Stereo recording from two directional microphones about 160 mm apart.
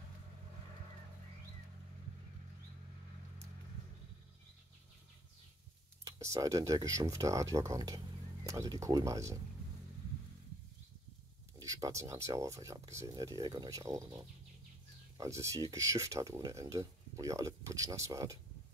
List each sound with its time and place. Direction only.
6.1 s speech: 20° right (ahead or behind)
11.6 s speech: 20° right (ahead or behind)